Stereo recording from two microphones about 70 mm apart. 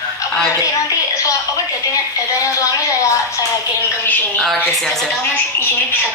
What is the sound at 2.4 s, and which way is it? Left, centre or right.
Speech, left.